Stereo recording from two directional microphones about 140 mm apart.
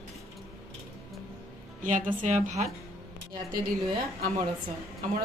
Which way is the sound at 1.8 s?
70° right (ahead or behind).